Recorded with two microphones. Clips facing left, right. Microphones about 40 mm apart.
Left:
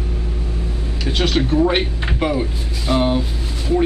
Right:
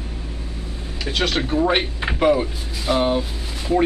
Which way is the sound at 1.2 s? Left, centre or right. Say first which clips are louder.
Left 3 dB; centre.